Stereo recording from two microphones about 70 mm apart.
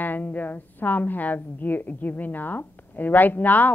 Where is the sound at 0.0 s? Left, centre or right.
Left.